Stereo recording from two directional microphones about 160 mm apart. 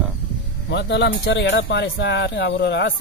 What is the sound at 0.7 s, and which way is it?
Speech, 90° left.